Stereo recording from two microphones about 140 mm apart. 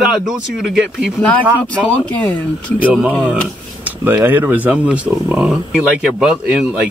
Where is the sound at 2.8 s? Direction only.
10° right (ahead or behind).